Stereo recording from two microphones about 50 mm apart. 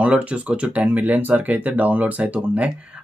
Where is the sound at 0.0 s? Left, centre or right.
Right.